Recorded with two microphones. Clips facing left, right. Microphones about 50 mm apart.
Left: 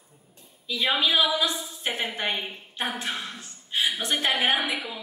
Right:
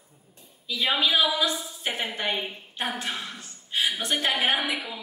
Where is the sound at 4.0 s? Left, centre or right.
Centre.